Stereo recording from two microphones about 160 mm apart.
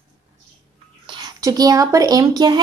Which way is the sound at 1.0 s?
30° right (ahead or behind).